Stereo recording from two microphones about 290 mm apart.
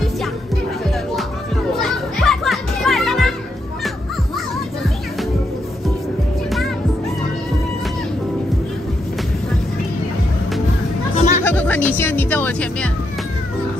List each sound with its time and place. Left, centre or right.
1.8 s children playing: centre
11.1 s music: left
11.4 s music: centre